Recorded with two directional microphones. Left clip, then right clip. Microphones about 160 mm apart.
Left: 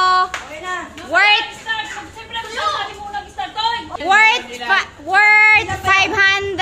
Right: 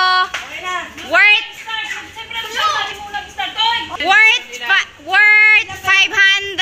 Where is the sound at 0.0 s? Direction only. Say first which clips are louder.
Even; 5° left (ahead or behind).